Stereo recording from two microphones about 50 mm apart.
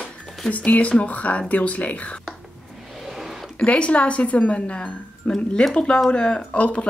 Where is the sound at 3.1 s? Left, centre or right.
Centre.